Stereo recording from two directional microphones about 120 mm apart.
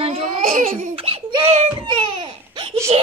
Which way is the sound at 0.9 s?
55° right (ahead or behind).